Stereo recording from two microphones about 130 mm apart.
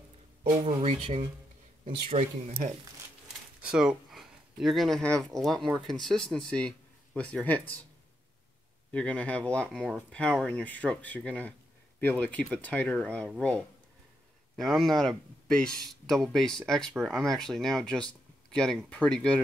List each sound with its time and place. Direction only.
0.7 s speech: 45° right (ahead or behind)
2.0 s speech: 55° right (ahead or behind)
3.6 s speech: 5° right (ahead or behind); by 7.8 s 10° left (ahead or behind)
8.9 s speech: 10° left (ahead or behind)